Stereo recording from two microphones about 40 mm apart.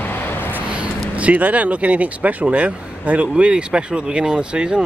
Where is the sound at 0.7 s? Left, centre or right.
Right.